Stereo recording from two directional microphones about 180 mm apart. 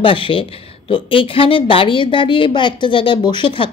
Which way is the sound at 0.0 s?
30° left (ahead or behind).